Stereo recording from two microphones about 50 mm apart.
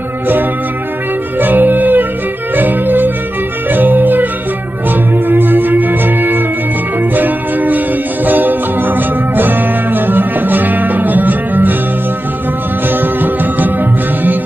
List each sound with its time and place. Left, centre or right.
1.4 s music: right
12.8 s music: right